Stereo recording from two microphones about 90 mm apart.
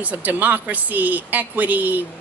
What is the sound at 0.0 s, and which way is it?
A woman's voice, 15° right (ahead or behind).